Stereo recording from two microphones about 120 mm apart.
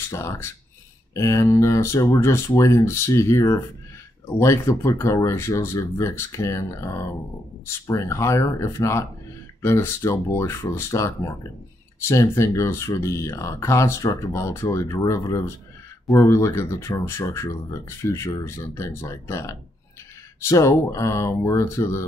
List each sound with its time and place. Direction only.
0.1 s speech: 25° left (ahead or behind)